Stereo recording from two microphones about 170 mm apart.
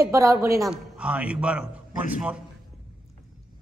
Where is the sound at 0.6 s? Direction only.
5° right (ahead or behind).